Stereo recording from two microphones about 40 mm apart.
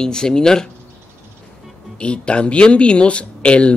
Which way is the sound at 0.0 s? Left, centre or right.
Centre.